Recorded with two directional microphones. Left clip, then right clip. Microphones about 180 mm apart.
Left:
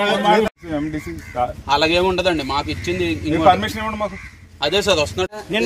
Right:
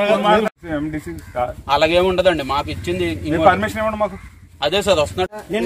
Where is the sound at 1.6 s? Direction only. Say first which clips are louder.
Right 2 dB; 15° right (ahead or behind).